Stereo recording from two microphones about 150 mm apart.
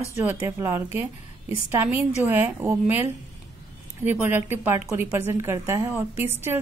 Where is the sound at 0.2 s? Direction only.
15° right (ahead or behind).